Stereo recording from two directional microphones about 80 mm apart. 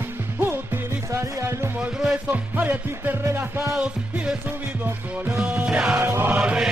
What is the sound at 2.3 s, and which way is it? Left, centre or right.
Music, right.